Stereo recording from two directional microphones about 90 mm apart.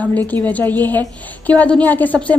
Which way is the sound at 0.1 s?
20° left (ahead or behind).